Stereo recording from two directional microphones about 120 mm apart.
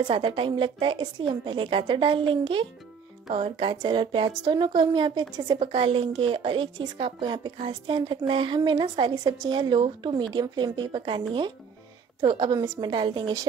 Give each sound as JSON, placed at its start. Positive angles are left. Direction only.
{"t": 0.0, "sound": "a woman's voice", "side_deg": -45}
{"t": 12.5, "sound": "a woman's voice", "side_deg": -30}
{"t": 12.9, "sound": "a woman's voice", "side_deg": -40}